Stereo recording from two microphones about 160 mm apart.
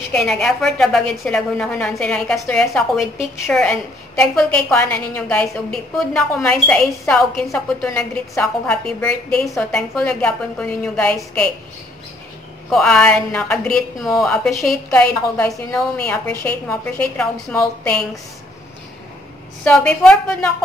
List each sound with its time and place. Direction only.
0.1 s a woman's voice: 5° left (ahead or behind)
9.4 s a woman's voice: 20° left (ahead or behind)
9.7 s a woman's voice: 5° left (ahead or behind)
12.6 s a woman's voice: 5° left (ahead or behind)
19.6 s a woman's voice: 5° left (ahead or behind)